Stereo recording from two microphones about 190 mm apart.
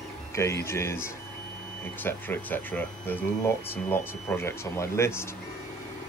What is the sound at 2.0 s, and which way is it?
Speech, 10° left (ahead or behind).